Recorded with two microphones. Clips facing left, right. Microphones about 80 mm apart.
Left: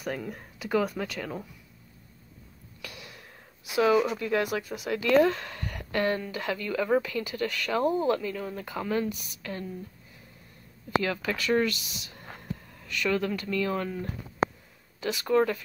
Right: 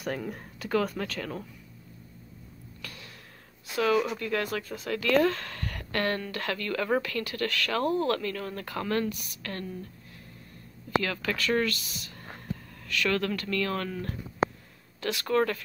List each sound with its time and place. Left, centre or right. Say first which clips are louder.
0.0 s a woman's voice: right 1 dB; centre
2.8 s gasp: left 2 dB; centre
3.7 s a woman's voice: left 3 dB; centre
11.0 s a woman's voice: left 1 dB; centre